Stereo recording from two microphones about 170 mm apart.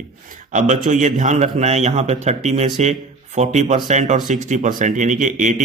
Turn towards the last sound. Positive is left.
turn(degrees=-45)  # may be behind; listen again after turning